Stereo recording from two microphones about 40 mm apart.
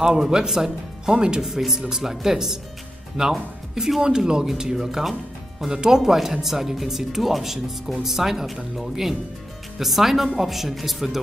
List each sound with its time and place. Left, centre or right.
0.0 s speech: centre
4.7 s speech: centre